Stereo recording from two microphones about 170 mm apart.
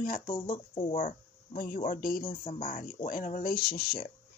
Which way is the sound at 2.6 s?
55° left (ahead or behind).